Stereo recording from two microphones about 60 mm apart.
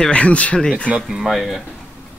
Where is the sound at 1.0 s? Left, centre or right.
Centre.